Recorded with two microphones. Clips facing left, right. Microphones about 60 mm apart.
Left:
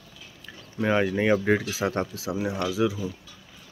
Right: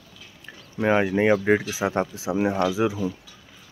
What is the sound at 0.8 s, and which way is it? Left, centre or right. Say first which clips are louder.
Speech: right 3 dB; centre.